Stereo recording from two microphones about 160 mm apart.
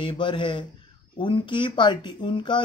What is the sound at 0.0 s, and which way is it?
Speech, 30° left (ahead or behind).